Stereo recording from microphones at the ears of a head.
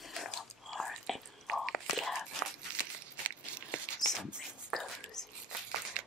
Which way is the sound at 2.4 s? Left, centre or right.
Right.